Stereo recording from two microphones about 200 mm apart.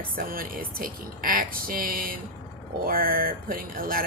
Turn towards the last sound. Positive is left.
turn(degrees=-45)  # may be behind; listen again after turning